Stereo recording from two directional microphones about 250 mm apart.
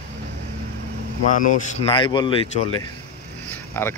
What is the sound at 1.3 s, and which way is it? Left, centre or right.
Speech, left.